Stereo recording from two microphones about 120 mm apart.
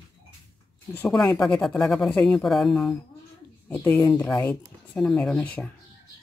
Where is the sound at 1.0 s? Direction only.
10° left (ahead or behind).